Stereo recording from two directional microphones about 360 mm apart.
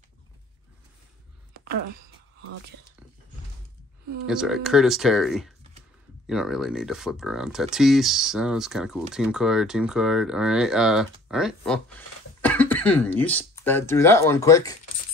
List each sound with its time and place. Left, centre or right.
4.3 s speech: centre